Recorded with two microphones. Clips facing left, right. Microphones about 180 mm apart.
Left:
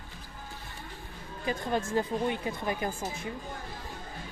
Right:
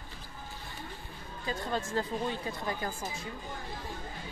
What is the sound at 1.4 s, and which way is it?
Speech, 20° left (ahead or behind).